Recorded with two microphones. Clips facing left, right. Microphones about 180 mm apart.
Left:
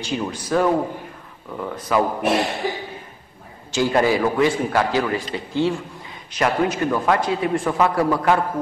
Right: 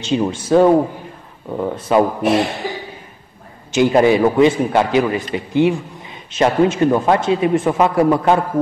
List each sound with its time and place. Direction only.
0.0 s a man's voice: 25° right (ahead or behind)
3.7 s a man's voice: 20° right (ahead or behind)